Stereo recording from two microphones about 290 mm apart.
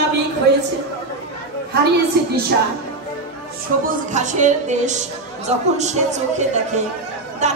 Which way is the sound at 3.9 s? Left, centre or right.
Right.